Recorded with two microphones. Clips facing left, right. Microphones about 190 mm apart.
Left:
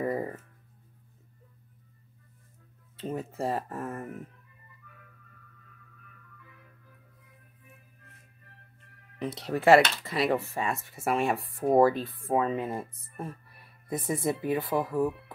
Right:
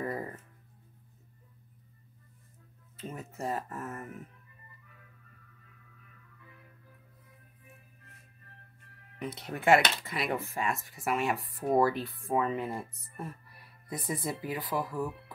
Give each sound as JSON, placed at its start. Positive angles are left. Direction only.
{"t": 0.0, "sound": "music", "side_deg": 25}
{"t": 3.0, "sound": "speech", "side_deg": 30}
{"t": 9.2, "sound": "speech", "side_deg": 35}